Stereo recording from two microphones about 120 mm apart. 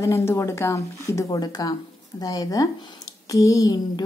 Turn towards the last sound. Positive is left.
turn(degrees=30)  # may be behind; listen again after turning